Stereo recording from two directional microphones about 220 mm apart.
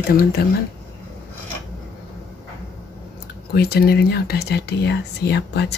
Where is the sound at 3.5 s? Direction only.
45° left (ahead or behind).